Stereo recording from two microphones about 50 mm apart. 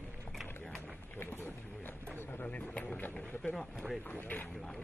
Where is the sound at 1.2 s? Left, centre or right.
Left.